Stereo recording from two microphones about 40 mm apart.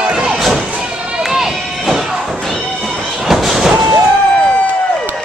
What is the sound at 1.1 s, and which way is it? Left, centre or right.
Run, centre.